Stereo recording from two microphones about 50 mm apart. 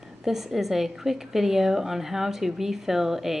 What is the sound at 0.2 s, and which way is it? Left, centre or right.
A woman's voice, centre.